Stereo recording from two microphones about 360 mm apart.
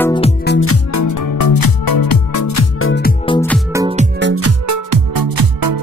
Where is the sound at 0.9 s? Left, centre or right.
Left.